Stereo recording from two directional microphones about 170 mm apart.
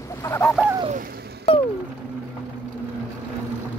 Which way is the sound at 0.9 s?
60° right (ahead or behind).